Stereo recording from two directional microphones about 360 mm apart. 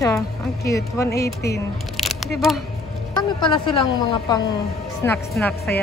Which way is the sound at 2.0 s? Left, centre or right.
Centre.